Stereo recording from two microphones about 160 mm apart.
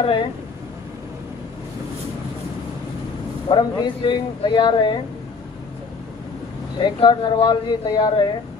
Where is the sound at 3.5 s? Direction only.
30° left (ahead or behind).